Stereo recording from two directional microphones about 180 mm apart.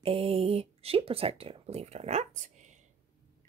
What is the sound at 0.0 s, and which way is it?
Speech, 30° right (ahead or behind).